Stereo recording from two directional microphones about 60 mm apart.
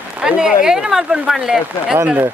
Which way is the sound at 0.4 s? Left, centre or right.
Centre.